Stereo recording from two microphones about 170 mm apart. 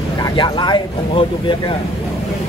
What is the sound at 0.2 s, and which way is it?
Speech, 25° left (ahead or behind).